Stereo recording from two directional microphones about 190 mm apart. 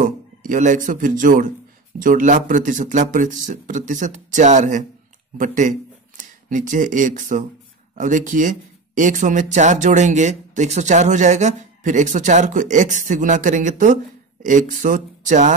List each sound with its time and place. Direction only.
0.0 s speech: 45° right (ahead or behind)